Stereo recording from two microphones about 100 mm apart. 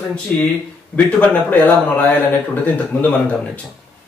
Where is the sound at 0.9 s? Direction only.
15° left (ahead or behind).